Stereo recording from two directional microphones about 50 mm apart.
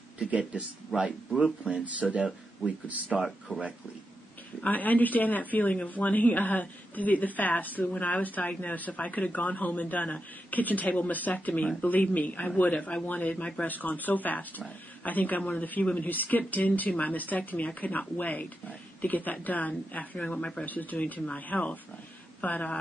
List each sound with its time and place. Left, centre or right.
0.3 s speech: right
3.5 s speech: left
4.6 s speech: left
20.6 s speech: left